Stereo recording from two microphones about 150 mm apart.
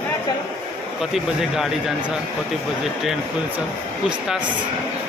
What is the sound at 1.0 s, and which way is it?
Speech, centre (ahead or behind).